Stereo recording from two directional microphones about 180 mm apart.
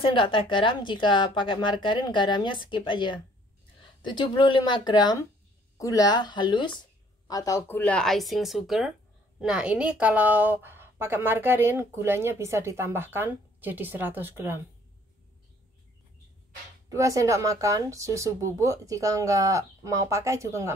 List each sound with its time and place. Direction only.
0.0 s a woman's voice: 30° left (ahead or behind); by 14.6 s 10° right (ahead or behind)
16.9 s a woman's voice: 15° right (ahead or behind)